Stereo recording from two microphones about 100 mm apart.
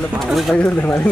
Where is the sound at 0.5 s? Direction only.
15° left (ahead or behind).